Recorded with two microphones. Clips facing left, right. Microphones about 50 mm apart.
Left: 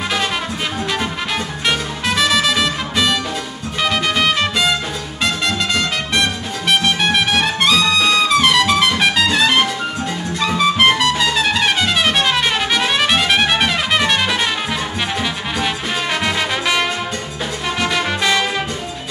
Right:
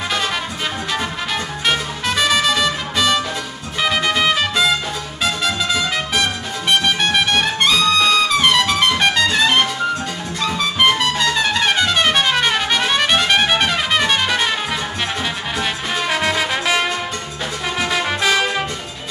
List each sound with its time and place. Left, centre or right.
1.7 s music: centre
6.8 s trumpet: centre
10.5 s music: centre
11.0 s trumpet: centre
15.6 s music: centre